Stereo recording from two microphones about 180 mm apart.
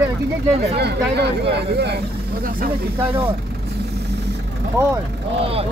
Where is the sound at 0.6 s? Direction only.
65° right (ahead or behind).